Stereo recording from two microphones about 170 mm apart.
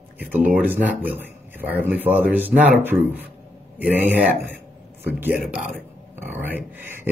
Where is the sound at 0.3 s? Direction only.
10° right (ahead or behind).